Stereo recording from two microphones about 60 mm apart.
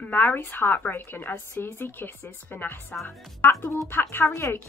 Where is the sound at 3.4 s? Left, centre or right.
Left.